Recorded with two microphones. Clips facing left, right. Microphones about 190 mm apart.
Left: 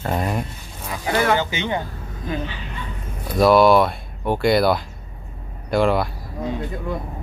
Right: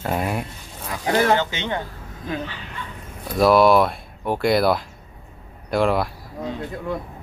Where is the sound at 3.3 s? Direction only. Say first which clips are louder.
Left 1 dB; centre (ahead or behind).